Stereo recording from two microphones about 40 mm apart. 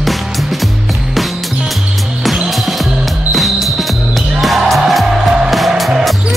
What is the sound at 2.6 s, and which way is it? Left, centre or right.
Music, centre.